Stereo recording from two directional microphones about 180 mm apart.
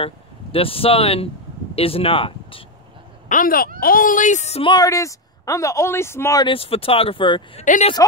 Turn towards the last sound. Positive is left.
turn(degrees=45)  # may be behind; listen again after turning